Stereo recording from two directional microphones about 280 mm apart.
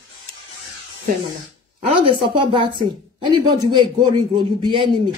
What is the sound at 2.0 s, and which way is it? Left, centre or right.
Speech, centre.